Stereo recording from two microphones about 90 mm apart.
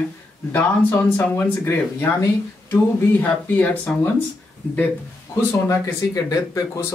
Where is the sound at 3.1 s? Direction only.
20° left (ahead or behind).